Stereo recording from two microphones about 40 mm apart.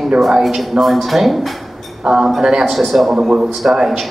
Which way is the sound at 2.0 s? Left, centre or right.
Centre.